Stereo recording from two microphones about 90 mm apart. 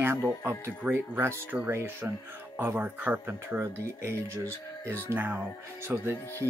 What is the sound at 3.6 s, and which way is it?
Speech, 30° right (ahead or behind).